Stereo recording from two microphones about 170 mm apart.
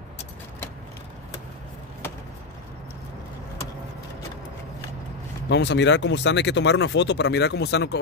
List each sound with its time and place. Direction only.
5.5 s speech: 90° left